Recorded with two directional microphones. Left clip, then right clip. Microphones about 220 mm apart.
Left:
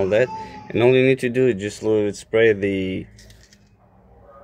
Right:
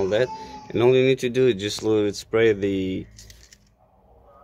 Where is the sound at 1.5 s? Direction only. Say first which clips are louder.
Left 1 dB; 60° right (ahead or behind).